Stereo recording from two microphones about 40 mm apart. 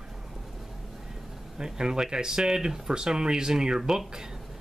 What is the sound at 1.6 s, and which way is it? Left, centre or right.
Speech, centre.